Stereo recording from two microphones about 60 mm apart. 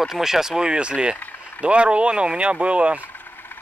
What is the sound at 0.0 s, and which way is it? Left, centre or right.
Speech, centre.